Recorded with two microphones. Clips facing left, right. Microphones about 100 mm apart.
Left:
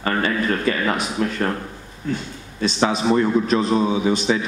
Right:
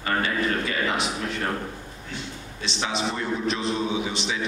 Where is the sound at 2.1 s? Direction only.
45° left (ahead or behind).